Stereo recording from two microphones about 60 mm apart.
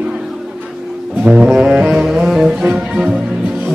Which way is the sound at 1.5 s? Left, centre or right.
Centre.